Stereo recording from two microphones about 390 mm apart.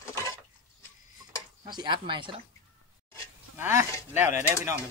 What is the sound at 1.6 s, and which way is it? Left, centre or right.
Speech, centre.